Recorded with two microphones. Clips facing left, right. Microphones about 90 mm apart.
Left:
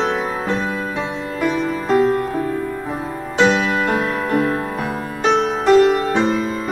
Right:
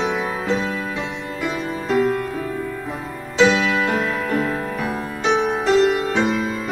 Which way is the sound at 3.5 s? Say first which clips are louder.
Left 1 dB; 35° left (ahead or behind).